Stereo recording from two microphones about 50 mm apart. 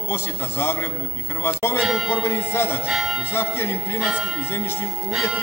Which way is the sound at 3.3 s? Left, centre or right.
Left.